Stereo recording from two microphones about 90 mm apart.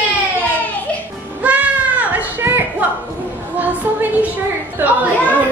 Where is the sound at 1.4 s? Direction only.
15° right (ahead or behind).